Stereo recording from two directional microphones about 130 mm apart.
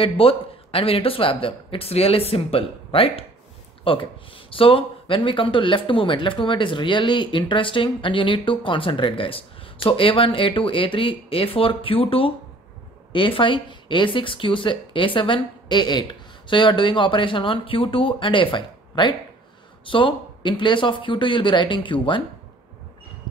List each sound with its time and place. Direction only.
0.0 s speech: 45° left (ahead or behind)